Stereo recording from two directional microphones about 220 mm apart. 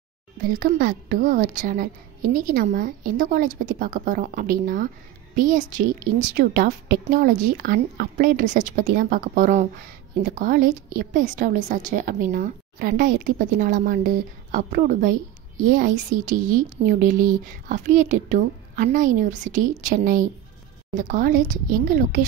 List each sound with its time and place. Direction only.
0.5 s a woman's voice: 40° right (ahead or behind)
6.0 s a woman's voice: 40° right (ahead or behind)